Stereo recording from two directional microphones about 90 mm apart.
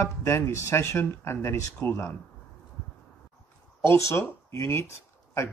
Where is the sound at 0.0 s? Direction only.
30° left (ahead or behind).